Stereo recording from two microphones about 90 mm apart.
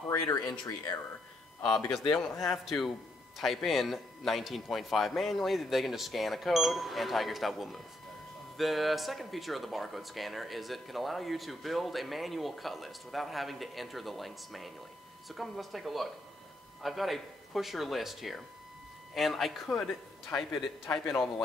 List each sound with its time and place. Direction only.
0.1 s speech: 35° left (ahead or behind)
1.9 s speech: 5° left (ahead or behind)